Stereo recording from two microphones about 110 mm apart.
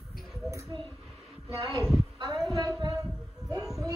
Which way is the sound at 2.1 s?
35° right (ahead or behind).